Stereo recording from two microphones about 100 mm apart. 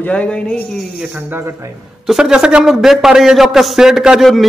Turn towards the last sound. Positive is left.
turn(degrees=0)  # may be behind; listen again after turning